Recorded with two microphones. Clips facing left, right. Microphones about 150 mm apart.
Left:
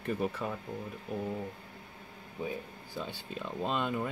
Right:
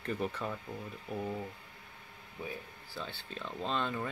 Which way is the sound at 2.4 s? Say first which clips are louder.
Left 5 dB; 25° left (ahead or behind).